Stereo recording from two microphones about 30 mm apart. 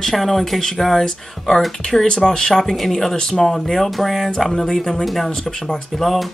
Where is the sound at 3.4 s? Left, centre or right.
Centre.